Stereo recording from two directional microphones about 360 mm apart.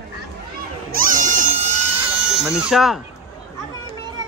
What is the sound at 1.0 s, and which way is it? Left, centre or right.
Goat, right.